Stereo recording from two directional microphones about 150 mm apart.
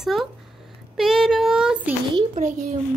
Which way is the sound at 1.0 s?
5° right (ahead or behind).